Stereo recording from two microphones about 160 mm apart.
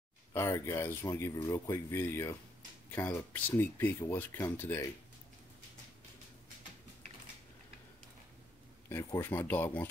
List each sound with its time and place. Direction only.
0.3 s speech: 15° left (ahead or behind)
8.8 s speech: 15° left (ahead or behind)